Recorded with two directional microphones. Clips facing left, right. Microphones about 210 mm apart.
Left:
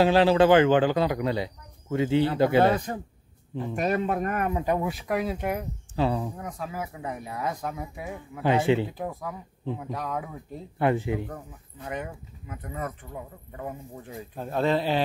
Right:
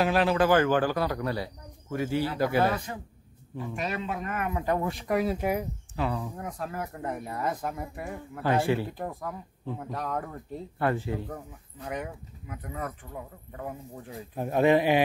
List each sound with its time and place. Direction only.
0.0 s speech: 30° left (ahead or behind)
3.7 s speech: 50° left (ahead or behind)
4.6 s speech: 10° left (ahead or behind)
5.9 s speech: 30° left (ahead or behind)
6.3 s speech: centre (ahead or behind)
8.4 s speech: 20° left (ahead or behind)
8.9 s speech: centre (ahead or behind)
10.8 s speech: 20° left (ahead or behind)
11.8 s speech: centre (ahead or behind)
14.3 s speech: 15° right (ahead or behind)